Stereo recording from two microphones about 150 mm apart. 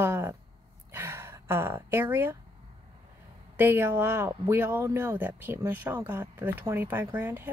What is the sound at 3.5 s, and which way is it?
Speech, 15° right (ahead or behind).